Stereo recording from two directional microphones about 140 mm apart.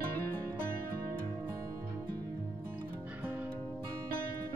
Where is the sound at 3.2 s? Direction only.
15° right (ahead or behind).